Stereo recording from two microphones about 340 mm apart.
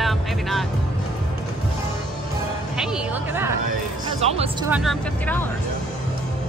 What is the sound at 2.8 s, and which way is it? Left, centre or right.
Speech, centre.